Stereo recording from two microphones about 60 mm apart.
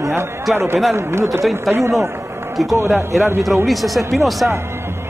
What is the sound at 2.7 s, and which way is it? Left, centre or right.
Speech, right.